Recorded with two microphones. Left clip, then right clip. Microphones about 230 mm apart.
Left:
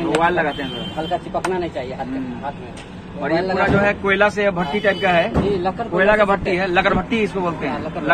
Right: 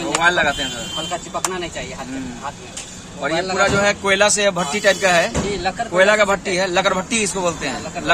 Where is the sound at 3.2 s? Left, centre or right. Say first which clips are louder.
Even; right.